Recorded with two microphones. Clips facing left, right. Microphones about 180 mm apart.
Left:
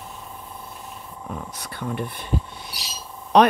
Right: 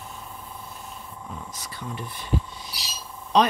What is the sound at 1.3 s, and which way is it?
Speech, 60° left (ahead or behind).